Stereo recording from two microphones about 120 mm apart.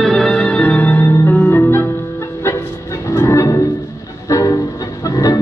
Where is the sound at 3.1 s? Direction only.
25° left (ahead or behind).